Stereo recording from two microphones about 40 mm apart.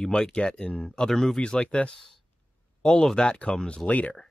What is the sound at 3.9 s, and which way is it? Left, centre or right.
Speech, left.